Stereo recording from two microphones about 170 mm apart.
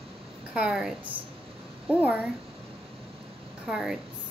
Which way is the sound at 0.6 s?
5° right (ahead or behind).